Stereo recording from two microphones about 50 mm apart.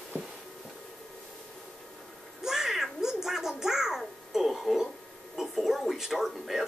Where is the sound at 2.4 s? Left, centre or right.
Centre.